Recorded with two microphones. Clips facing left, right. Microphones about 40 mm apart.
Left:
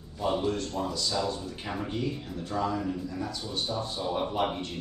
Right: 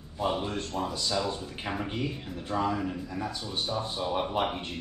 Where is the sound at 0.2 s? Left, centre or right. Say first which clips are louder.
Left 2 dB; right.